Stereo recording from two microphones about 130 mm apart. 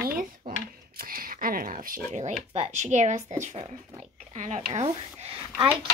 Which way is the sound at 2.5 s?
60° right (ahead or behind).